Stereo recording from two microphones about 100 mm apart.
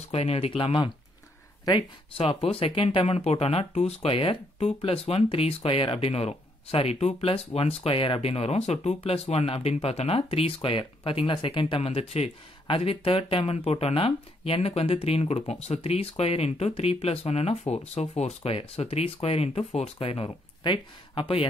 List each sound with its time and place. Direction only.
0.1 s speech: 80° left; by 0.9 s 60° left (ahead or behind)
1.6 s speech: 50° left (ahead or behind)
2.1 s speech: 65° left (ahead or behind)